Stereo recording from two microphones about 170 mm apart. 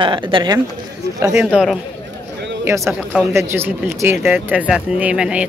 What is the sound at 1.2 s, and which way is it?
Speech, 15° right (ahead or behind).